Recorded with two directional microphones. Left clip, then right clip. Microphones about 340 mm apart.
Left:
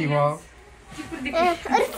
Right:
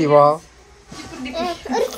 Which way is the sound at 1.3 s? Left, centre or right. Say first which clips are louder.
Left 3 dB; left.